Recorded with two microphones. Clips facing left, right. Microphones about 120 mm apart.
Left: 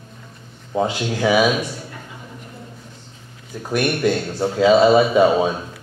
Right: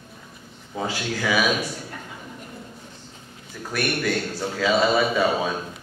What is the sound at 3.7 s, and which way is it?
A man's voice, 25° left (ahead or behind).